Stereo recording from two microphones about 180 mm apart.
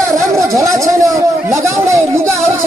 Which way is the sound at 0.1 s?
15° right (ahead or behind).